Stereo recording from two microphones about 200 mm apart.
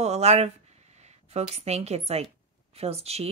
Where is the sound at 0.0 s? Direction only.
35° right (ahead or behind).